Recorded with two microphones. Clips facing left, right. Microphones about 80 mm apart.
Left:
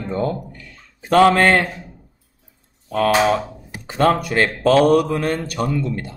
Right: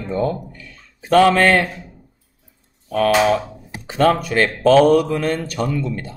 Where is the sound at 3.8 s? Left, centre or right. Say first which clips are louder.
Right 1 dB; left.